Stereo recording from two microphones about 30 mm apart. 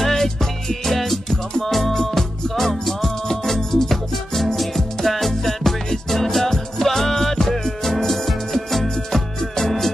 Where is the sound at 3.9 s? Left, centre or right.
Centre.